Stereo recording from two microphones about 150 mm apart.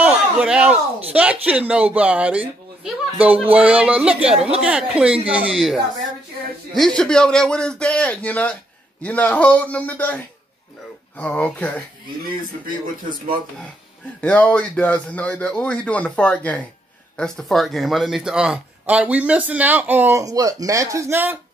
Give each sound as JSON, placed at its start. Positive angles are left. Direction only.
{"t": 0.0, "sound": "a sound", "side_deg": -5}
{"t": 1.1, "sound": "speech", "side_deg": -10}
{"t": 6.7, "sound": "a man's voice", "side_deg": 5}
{"t": 14.2, "sound": "a man's voice", "side_deg": 10}